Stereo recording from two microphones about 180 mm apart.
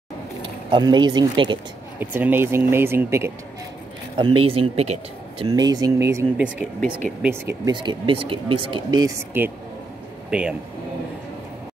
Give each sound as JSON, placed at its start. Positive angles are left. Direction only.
{"t": 0.4, "sound": "speech", "side_deg": -25}
{"t": 2.0, "sound": "speech", "side_deg": -10}
{"t": 4.2, "sound": "speech", "side_deg": -30}
{"t": 5.4, "sound": "speech", "side_deg": -20}
{"t": 7.7, "sound": "speech", "side_deg": -25}
{"t": 10.3, "sound": "speech", "side_deg": -5}